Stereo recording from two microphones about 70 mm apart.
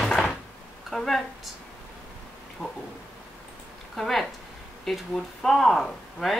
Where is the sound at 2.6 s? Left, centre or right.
Left.